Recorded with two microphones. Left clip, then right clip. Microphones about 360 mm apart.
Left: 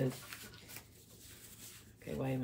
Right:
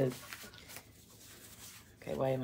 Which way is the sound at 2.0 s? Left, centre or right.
Centre.